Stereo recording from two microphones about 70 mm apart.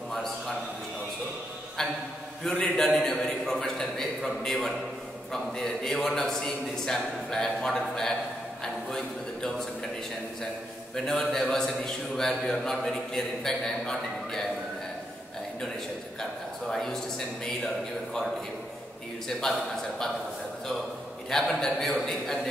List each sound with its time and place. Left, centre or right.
2.4 s a man's voice: centre
2.8 s a man's voice: centre
11.1 s a man's voice: centre
16.2 s speech: centre
21.3 s a man's voice: centre